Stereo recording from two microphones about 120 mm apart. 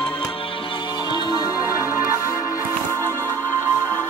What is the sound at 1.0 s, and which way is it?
Music, 35° left (ahead or behind).